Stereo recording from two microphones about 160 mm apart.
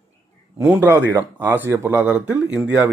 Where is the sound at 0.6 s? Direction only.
10° right (ahead or behind).